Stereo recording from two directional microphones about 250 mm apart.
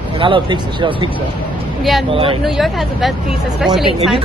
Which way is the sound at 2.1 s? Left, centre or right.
Right.